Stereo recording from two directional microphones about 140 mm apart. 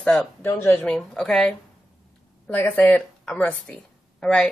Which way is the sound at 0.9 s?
5° left (ahead or behind).